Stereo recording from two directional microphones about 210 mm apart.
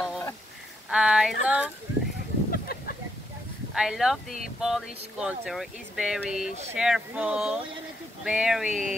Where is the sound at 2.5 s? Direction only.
45° left (ahead or behind).